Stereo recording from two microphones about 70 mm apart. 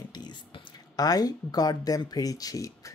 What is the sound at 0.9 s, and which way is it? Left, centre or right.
Speech, left.